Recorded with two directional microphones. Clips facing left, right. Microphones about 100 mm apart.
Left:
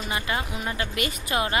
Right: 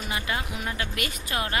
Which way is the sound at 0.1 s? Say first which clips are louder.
Left 2 dB; centre (ahead or behind).